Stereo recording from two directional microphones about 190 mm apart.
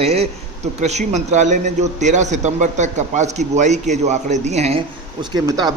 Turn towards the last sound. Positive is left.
turn(degrees=-20)  # may be behind; listen again after turning